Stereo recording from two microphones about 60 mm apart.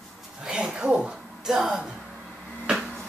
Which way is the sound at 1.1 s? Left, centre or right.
Centre.